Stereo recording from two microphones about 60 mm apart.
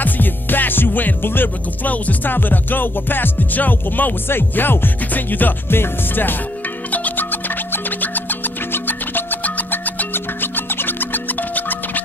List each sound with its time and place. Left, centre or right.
0.0 s music: left